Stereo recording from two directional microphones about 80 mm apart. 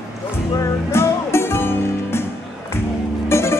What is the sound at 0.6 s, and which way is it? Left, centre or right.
Music, left.